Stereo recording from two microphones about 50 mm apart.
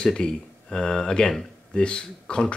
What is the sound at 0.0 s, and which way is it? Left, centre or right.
Speech, centre.